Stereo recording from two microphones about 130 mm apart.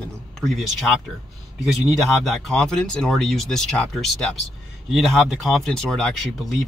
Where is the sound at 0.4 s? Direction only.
Centre (ahead or behind).